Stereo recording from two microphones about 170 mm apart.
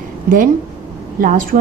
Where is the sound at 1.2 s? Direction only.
55° right (ahead or behind).